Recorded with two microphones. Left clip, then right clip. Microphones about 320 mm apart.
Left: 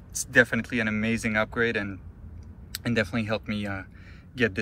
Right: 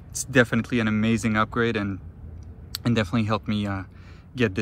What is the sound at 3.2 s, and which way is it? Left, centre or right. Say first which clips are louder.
Speech: right 3 dB; right.